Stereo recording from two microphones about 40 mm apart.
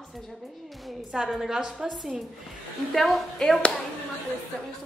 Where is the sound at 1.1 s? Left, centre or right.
Centre.